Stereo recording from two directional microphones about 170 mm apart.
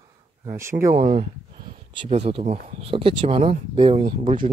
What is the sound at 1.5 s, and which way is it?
Speech, 30° right (ahead or behind).